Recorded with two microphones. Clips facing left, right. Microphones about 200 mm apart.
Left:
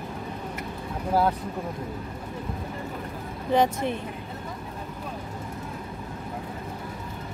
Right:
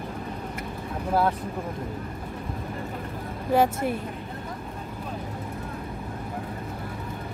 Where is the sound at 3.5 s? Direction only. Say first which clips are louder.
Right 1 dB; 5° right (ahead or behind).